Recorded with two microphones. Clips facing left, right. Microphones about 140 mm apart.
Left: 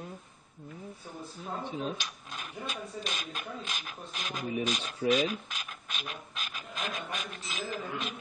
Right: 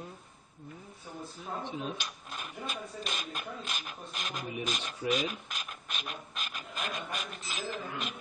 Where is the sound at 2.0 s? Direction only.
10° right (ahead or behind).